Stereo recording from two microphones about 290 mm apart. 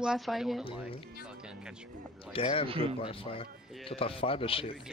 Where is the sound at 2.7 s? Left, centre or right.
Centre.